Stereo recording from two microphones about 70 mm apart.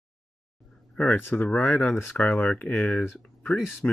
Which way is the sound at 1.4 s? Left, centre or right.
Centre.